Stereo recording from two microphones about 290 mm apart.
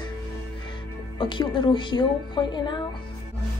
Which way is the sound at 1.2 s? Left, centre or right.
Centre.